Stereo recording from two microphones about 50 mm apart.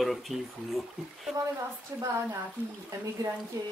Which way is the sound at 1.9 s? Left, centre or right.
Right.